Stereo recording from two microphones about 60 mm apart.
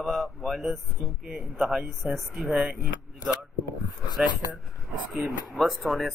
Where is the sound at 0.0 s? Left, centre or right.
Centre.